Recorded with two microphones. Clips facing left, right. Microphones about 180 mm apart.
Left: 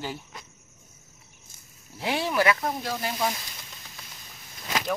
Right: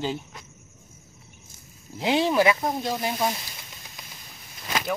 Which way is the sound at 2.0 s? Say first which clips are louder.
Right 5 dB; 20° right (ahead or behind).